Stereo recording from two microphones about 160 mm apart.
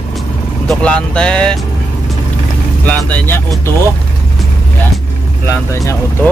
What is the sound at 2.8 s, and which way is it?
Speech, 10° left (ahead or behind).